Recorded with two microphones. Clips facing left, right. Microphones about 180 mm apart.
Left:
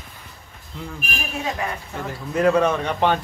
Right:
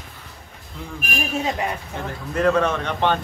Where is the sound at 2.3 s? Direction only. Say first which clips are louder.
Left 1 dB; 10° left (ahead or behind).